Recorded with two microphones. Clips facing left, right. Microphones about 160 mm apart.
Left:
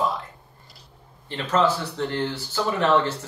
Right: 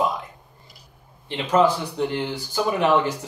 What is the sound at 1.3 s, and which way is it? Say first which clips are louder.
Speech: right 3 dB; 10° right (ahead or behind).